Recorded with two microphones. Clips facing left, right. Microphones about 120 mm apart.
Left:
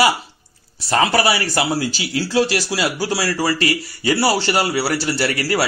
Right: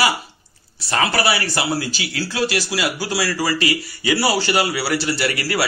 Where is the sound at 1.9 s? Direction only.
35° left (ahead or behind).